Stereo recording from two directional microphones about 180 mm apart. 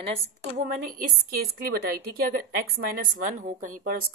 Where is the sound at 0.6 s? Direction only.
50° right (ahead or behind).